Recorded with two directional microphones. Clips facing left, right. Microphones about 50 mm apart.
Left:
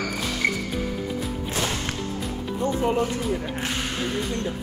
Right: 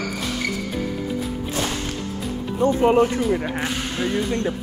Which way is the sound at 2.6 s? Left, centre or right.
Right.